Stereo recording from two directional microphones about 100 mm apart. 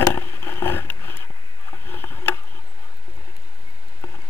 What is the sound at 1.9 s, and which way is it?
Tick-tock, 20° left (ahead or behind).